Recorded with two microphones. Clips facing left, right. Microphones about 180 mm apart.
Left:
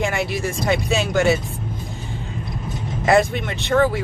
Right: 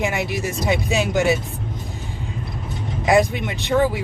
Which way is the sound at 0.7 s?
15° right (ahead or behind).